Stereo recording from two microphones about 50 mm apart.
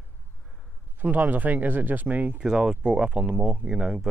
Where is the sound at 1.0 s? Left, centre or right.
Right.